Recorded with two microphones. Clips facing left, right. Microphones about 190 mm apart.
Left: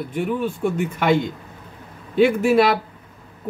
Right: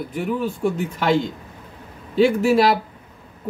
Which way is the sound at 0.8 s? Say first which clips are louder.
Left 3 dB; 55° left (ahead or behind).